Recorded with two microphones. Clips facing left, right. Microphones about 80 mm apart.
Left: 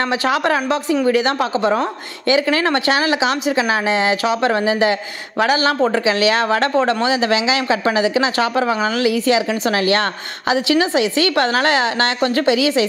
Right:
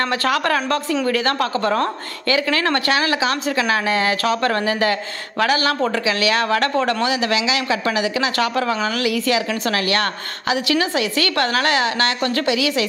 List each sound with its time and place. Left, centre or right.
0.2 s a woman's voice: centre